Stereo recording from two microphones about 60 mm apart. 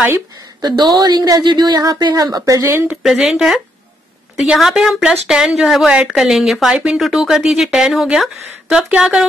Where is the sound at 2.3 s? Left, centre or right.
Right.